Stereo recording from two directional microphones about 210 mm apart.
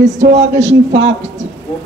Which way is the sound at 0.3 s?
60° right (ahead or behind).